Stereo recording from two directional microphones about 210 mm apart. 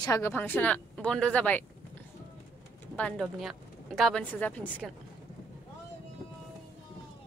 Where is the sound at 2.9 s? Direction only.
5° left (ahead or behind).